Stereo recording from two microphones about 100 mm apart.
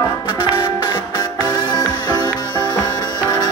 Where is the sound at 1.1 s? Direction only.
40° left (ahead or behind).